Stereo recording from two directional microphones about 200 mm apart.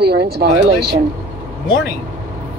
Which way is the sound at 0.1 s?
55° right (ahead or behind).